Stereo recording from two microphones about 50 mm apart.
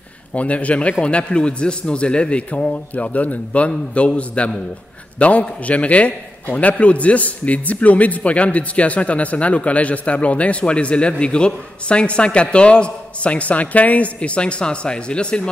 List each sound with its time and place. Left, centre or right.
0.3 s a man's voice: left